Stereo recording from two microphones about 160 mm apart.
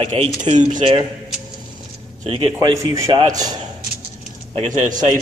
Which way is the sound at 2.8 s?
20° right (ahead or behind).